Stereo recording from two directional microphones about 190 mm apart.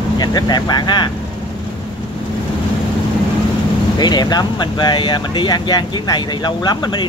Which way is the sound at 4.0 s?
20° left (ahead or behind).